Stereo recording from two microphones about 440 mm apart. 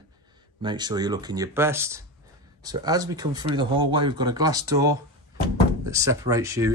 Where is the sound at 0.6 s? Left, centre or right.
Centre.